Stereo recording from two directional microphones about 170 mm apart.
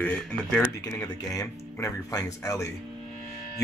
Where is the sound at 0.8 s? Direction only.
20° left (ahead or behind).